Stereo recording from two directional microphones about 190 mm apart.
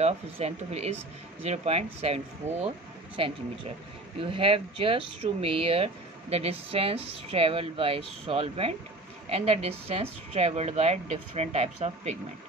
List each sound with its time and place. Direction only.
0.0 s a woman's voice: 35° right (ahead or behind)